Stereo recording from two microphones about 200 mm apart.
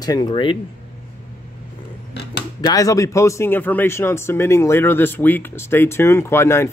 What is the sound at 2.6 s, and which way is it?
Speech, 15° left (ahead or behind).